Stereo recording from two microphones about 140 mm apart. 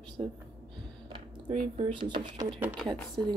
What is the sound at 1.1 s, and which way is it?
Speech, 40° right (ahead or behind).